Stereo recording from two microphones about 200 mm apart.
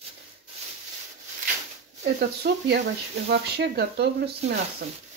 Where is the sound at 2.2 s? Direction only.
55° right (ahead or behind).